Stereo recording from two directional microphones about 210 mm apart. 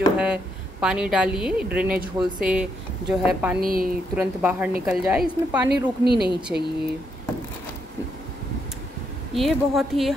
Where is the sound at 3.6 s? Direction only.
45° right (ahead or behind).